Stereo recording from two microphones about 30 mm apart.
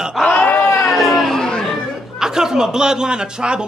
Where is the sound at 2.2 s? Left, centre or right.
Centre.